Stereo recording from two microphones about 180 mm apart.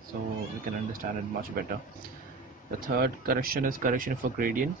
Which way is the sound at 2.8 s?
55° right (ahead or behind).